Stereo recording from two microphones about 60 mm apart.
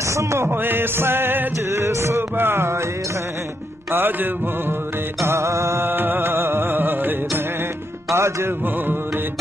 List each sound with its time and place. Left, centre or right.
0.0 s a sound: right
0.5 s music: right
1.7 s music: right
2.3 s music: right
3.9 s music: right
5.2 s music: right
8.1 s music: right
8.6 s music: right